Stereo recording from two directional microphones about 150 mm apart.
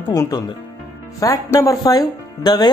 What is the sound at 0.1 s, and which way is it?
Speech, 25° left (ahead or behind).